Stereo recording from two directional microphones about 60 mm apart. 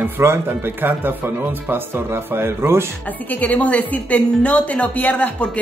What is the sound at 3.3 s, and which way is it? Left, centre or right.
Speech, left.